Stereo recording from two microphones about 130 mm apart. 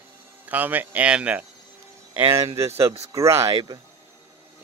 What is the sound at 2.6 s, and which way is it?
Speech, 20° right (ahead or behind).